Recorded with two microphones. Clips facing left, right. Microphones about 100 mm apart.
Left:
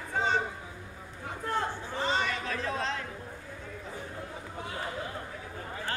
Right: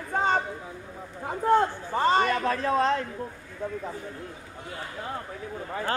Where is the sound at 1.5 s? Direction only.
50° right (ahead or behind).